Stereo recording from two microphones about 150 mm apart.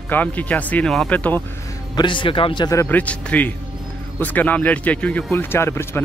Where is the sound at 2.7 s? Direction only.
15° left (ahead or behind).